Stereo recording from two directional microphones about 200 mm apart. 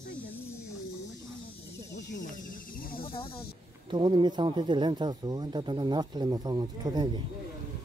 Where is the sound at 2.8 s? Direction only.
45° left (ahead or behind).